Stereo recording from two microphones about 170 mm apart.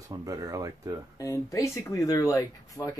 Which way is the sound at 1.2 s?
20° left (ahead or behind).